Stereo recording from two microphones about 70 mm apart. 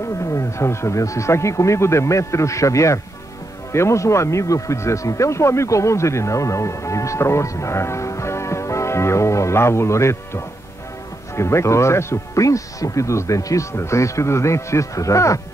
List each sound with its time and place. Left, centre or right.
0.3 s speech: left